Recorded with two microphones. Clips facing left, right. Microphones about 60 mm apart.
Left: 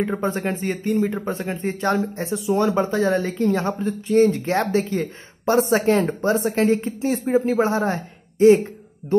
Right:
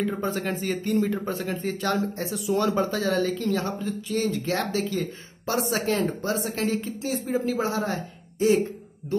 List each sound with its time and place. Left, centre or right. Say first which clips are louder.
0.0 s speech: left 4 dB; left